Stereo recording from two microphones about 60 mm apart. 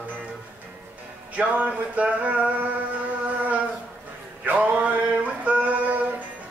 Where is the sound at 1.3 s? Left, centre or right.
Right.